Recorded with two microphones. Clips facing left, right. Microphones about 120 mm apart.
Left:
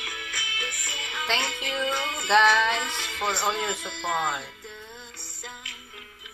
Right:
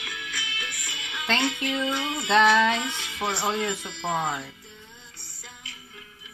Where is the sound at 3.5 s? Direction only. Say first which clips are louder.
Right 2 dB; 65° left (ahead or behind).